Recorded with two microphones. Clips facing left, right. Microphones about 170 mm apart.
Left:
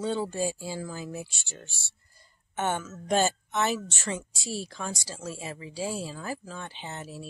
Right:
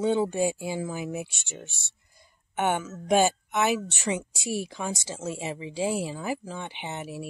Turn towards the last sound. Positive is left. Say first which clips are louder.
# right 4 dB
turn(degrees=-15)  # may be behind; listen again after turning